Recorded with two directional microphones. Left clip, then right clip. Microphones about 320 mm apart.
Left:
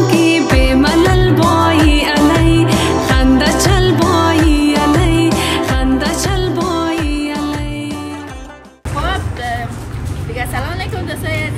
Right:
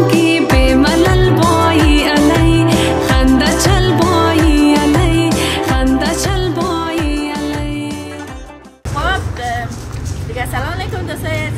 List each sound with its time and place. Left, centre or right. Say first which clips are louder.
0.1 s music: even; centre
10.3 s vehicle: right 1 dB; centre